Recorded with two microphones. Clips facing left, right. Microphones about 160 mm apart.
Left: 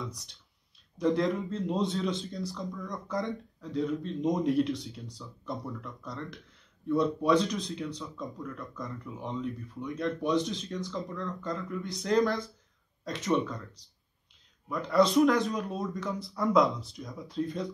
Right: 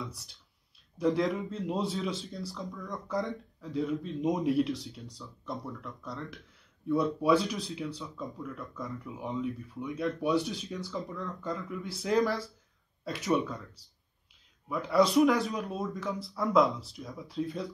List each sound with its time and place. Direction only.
0.0 s speech: centre (ahead or behind)